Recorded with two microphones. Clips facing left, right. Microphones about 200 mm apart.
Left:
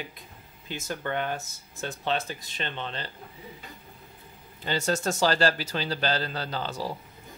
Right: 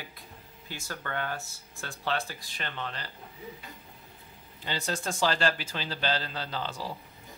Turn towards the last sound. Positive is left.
turn(degrees=40)  # may be behind; listen again after turning